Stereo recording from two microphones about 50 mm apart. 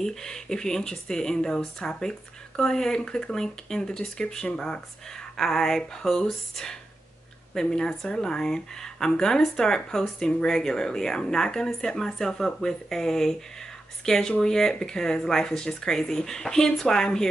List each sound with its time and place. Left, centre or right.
0.0 s speech: centre